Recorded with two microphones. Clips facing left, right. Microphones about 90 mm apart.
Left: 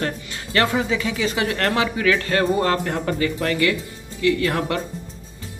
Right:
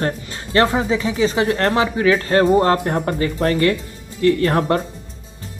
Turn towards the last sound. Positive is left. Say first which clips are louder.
# right 5 dB
turn(degrees=-35)  # may be behind; listen again after turning